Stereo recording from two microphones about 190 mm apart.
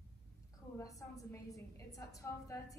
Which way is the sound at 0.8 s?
15° left (ahead or behind).